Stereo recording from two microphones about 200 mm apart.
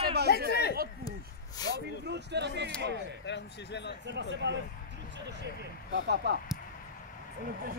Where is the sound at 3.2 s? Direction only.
60° left (ahead or behind).